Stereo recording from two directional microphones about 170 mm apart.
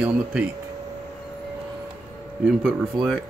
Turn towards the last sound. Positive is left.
turn(degrees=0)  # may be behind; listen again after turning